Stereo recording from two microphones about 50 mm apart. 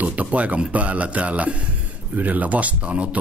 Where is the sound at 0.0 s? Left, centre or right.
Right.